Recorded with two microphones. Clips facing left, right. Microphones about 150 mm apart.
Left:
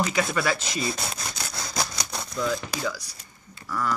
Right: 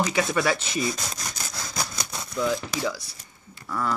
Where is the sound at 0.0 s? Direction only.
20° right (ahead or behind).